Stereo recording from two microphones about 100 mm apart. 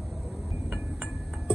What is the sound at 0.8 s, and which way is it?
Glass, centre (ahead or behind).